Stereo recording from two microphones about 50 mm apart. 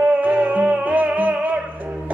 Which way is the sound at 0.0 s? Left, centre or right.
Right.